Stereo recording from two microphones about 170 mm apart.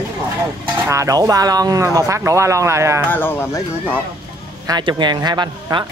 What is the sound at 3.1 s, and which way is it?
Speech, 10° left (ahead or behind).